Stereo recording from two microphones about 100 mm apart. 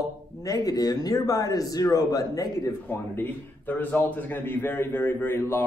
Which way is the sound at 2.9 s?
20° left (ahead or behind).